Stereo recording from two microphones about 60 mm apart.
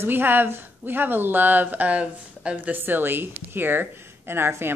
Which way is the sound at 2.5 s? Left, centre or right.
Right.